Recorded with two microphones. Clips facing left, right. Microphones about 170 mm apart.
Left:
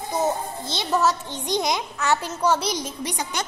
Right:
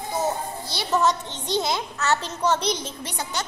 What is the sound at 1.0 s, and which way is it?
A woman's voice, 10° left (ahead or behind).